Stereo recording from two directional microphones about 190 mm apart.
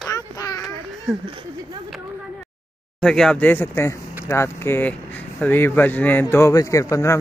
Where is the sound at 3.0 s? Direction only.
5° left (ahead or behind).